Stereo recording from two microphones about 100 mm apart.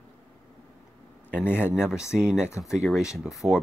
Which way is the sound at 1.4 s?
20° left (ahead or behind).